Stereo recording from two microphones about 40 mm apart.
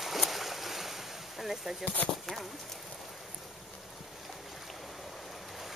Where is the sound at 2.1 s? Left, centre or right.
Centre.